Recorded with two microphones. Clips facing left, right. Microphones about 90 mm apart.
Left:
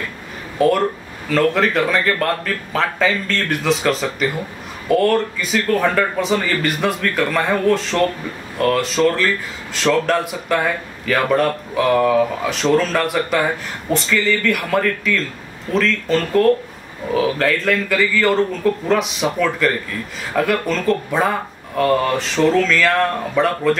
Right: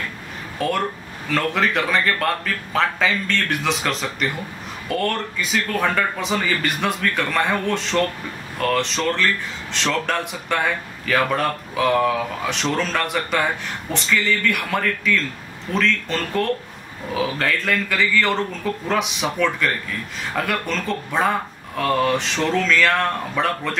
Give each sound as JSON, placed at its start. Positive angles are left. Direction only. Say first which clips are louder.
{"t": 0.6, "sound": "speech", "louder": "left 7 dB", "side_deg": 0}